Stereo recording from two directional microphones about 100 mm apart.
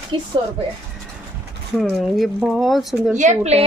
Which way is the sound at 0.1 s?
55° right (ahead or behind).